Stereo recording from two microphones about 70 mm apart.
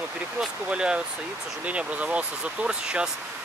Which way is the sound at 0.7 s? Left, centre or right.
Centre.